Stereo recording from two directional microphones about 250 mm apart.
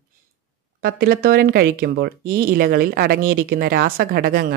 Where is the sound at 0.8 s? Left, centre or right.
Right.